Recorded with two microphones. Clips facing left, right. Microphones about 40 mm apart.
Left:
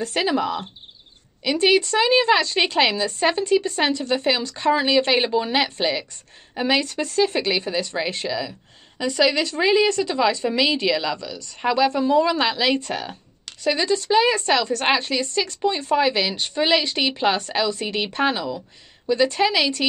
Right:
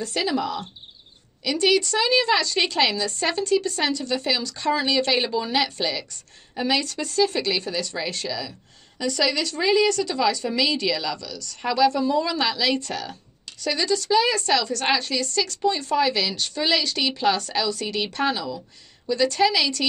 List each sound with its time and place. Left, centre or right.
0.0 s a woman's voice: left